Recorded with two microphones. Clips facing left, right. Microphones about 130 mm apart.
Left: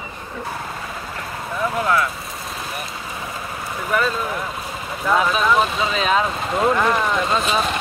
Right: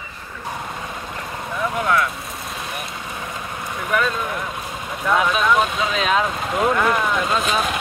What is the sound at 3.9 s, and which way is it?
Speech, centre (ahead or behind).